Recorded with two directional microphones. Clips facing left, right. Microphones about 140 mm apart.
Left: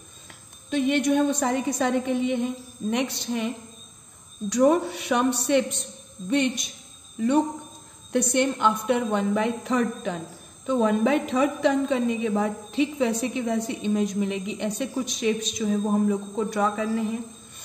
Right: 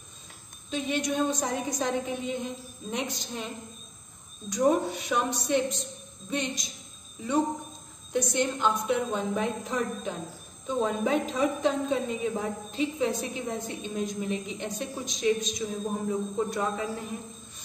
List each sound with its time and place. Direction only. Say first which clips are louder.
0.7 s a woman's voice: left 7 dB; 60° left (ahead or behind); by 17.2 s 90° left